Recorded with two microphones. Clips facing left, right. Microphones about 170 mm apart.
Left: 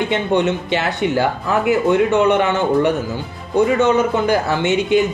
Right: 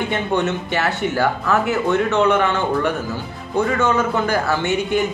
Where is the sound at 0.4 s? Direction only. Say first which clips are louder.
Left 2 dB; 15° left (ahead or behind).